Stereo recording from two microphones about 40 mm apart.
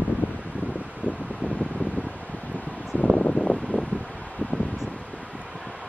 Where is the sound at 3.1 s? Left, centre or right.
Left.